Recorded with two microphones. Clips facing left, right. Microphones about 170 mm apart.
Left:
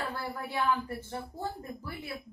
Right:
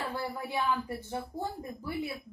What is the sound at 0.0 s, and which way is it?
A woman's voice, 15° right (ahead or behind).